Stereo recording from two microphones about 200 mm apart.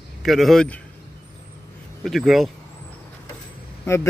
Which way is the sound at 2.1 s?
Centre (ahead or behind).